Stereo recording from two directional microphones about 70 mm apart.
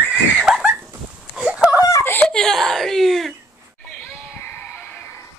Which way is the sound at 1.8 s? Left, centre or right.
Left.